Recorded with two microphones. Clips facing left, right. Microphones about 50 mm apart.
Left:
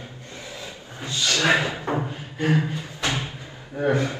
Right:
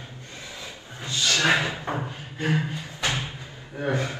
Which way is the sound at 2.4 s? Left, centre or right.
Left.